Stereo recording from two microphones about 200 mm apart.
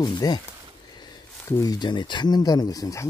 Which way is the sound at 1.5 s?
20° left (ahead or behind).